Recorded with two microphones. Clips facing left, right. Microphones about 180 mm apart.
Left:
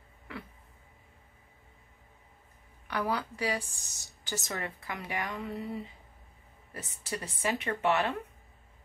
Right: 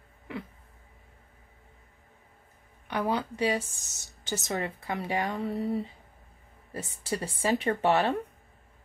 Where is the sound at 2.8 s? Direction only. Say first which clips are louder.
Right 3 dB; 20° right (ahead or behind).